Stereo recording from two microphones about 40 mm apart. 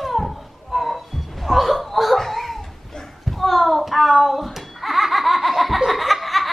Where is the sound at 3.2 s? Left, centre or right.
Centre.